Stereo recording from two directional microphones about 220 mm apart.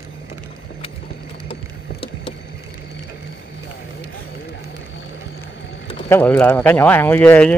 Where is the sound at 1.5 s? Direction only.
25° left (ahead or behind).